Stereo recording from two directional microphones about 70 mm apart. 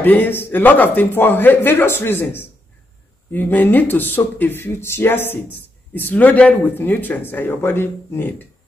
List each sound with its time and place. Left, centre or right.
0.0 s a man's voice: left